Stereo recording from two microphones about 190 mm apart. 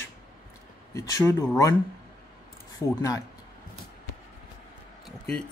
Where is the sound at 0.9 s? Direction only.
15° left (ahead or behind).